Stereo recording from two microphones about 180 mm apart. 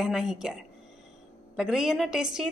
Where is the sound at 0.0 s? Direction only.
5° right (ahead or behind).